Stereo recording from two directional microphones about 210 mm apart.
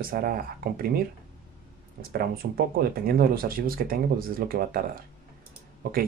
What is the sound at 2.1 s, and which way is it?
Speech, 45° right (ahead or behind).